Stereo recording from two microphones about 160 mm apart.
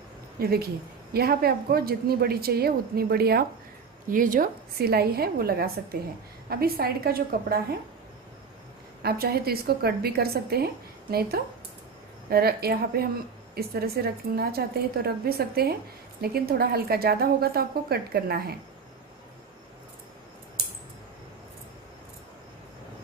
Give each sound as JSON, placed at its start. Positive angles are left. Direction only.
{"t": 0.4, "sound": "a woman's voice", "side_deg": -75}
{"t": 4.1, "sound": "a woman's voice", "side_deg": -60}
{"t": 9.0, "sound": "a woman's voice", "side_deg": -75}